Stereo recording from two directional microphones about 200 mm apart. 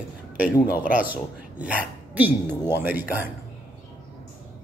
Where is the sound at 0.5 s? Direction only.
20° left (ahead or behind).